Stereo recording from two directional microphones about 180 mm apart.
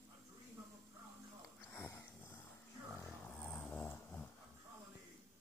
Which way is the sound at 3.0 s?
10° left (ahead or behind).